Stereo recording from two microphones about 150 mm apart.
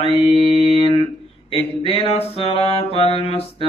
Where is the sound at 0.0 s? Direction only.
40° left (ahead or behind).